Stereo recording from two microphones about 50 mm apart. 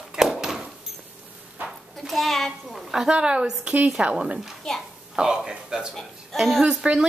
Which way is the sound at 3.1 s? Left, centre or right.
Centre.